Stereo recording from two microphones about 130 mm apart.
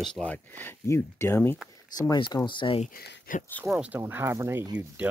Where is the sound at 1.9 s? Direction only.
30° left (ahead or behind).